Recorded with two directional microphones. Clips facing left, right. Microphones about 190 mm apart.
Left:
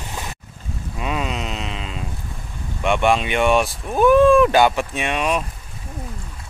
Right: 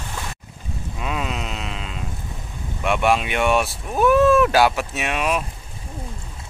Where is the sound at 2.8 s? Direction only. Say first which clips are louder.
Left 2 dB; centre (ahead or behind).